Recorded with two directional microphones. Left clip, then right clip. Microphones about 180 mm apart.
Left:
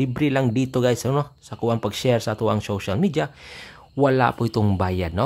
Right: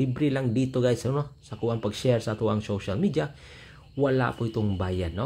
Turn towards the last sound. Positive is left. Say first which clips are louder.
# left 7 dB
turn(degrees=30)  # may be behind; listen again after turning